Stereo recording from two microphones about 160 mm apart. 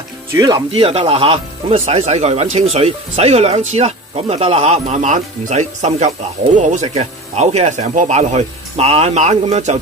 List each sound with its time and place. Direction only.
0.3 s speech: 20° right (ahead or behind); by 9.8 s 45° right (ahead or behind)